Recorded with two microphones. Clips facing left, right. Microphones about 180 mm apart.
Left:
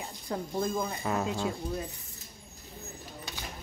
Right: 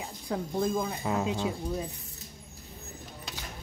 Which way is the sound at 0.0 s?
5° right (ahead or behind).